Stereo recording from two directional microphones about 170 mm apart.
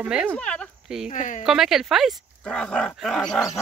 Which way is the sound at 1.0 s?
50° left (ahead or behind).